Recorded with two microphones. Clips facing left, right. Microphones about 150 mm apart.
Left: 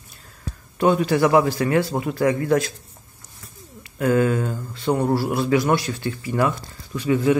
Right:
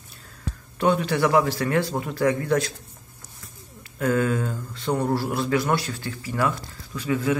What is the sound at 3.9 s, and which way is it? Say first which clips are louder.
Speech: left 4 dB; 10° left (ahead or behind).